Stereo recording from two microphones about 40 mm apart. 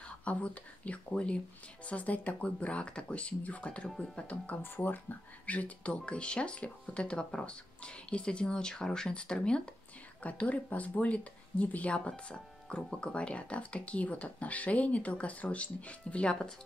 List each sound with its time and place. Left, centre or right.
0.2 s speech: left
4.6 s speech: left
5.5 s speech: left
10.2 s speech: left